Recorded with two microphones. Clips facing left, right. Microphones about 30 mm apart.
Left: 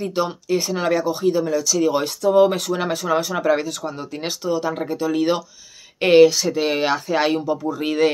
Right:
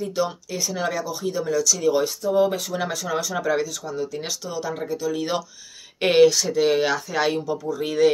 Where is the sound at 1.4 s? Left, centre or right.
Centre.